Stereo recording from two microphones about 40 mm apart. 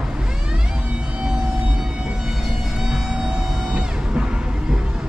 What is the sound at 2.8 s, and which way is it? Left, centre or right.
Music, centre.